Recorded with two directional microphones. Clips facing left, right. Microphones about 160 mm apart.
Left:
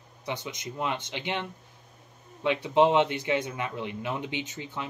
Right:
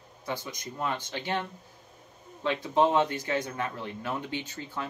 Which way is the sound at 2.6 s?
20° left (ahead or behind).